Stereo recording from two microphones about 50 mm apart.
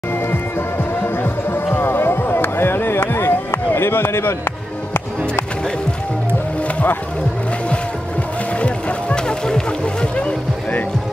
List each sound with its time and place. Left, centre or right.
1.0 s music: left
8.5 s music: left